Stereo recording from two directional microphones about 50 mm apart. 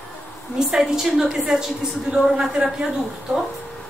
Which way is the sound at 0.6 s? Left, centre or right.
Centre.